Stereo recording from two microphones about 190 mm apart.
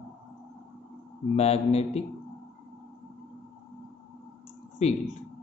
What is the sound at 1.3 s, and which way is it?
Speech, 35° left (ahead or behind).